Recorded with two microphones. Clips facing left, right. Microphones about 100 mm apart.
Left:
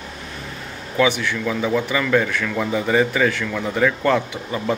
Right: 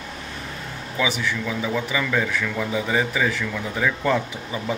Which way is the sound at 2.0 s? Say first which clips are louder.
Left 4 dB; 5° right (ahead or behind).